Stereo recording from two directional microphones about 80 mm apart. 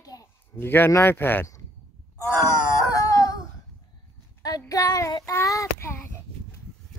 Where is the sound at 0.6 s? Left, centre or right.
Left.